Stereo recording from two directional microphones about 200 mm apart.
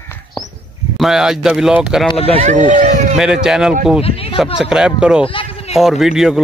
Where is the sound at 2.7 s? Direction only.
40° right (ahead or behind).